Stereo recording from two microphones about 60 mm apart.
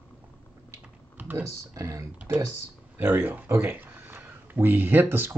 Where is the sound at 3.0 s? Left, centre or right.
Right.